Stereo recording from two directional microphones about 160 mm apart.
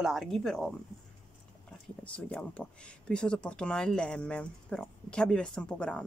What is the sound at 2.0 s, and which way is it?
A woman's voice, 10° left (ahead or behind).